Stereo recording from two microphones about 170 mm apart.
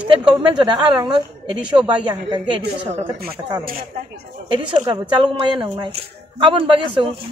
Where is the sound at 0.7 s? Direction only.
25° right (ahead or behind).